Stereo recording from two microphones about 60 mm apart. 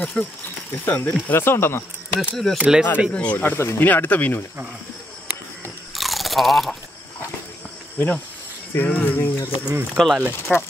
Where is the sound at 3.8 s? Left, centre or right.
Left.